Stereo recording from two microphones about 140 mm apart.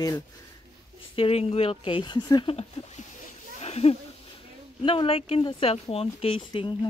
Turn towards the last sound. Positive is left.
turn(degrees=35)  # may be behind; listen again after turning